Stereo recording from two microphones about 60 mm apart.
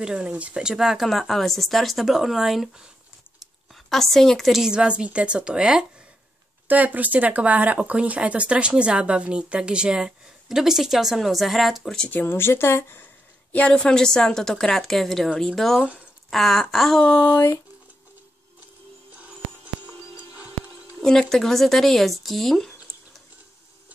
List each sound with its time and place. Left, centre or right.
0.0 s speech: centre
3.7 s a woman's voice: centre
4.6 s speech: centre
6.7 s speech: right; by 11.9 s centre
12.1 s speech: left
13.7 s a woman's voice: centre
17.0 s speech: left
21.0 s speech: centre